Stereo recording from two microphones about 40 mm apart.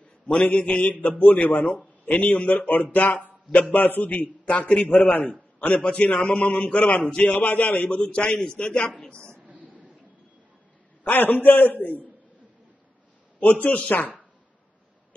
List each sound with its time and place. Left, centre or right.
0.0 s mantra: left
1.2 s a man's voice: left
2.6 s a man's voice: left
5.0 s a man's voice: left
5.6 s a man's voice: left
9.1 s a woman's voice: right
9.5 s a sound: right
11.1 s a man's voice: left
13.4 s a man's voice: left